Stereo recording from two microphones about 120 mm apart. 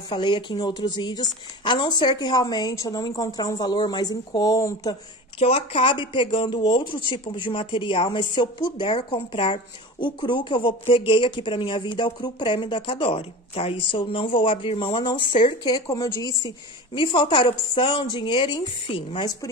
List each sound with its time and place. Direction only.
0.1 s a woman's voice: 40° left (ahead or behind)
5.4 s speech: 55° left (ahead or behind)
15.0 s speech: 40° left (ahead or behind)
15.9 s speech: 30° left (ahead or behind); by 19.2 s 50° left (ahead or behind)